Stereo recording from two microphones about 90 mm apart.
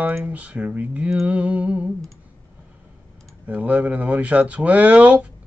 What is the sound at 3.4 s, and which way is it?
Speech, 15° right (ahead or behind).